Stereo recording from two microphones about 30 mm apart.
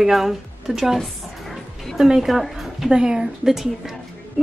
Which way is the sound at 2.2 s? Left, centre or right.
Centre.